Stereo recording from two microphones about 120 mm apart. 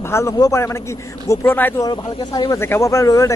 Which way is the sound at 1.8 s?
35° left (ahead or behind).